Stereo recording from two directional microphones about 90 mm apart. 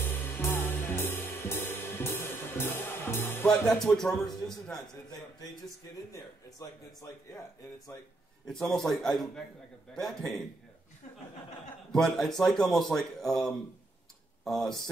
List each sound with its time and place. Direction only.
0.0 s music: 25° left (ahead or behind)
3.4 s a man's voice: 5° left (ahead or behind)
6.1 s speech: 40° left (ahead or behind)
8.5 s a man's voice: 5° left (ahead or behind)
11.9 s a man's voice: 5° left (ahead or behind)